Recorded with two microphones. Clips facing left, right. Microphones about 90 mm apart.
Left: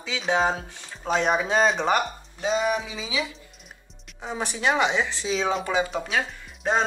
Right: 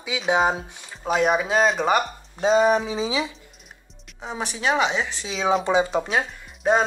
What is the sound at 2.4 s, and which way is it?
Speech, 35° right (ahead or behind).